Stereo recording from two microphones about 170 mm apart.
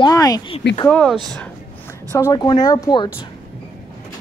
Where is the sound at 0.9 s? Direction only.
Centre (ahead or behind).